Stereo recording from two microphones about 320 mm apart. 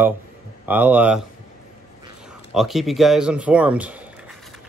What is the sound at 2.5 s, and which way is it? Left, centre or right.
Speech, centre.